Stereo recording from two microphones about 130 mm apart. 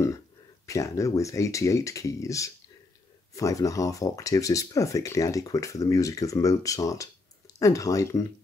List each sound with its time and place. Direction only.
0.7 s speech: 25° left (ahead or behind)